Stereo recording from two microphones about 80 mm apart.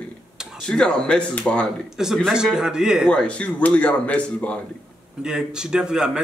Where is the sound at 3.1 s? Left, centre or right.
Centre.